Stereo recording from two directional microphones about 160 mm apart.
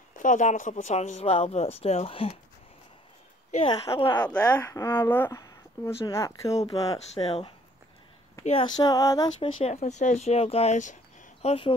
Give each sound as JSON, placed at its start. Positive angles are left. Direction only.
{"t": 0.2, "sound": "speech", "side_deg": 50}
{"t": 3.6, "sound": "speech", "side_deg": 25}
{"t": 4.4, "sound": "speech", "side_deg": 15}
{"t": 7.2, "sound": "speech", "side_deg": 40}
{"t": 9.4, "sound": "speech", "side_deg": 40}
{"t": 11.4, "sound": "speech", "side_deg": 35}